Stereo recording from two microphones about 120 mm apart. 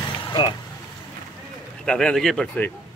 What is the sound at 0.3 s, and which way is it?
Speech, 40° left (ahead or behind).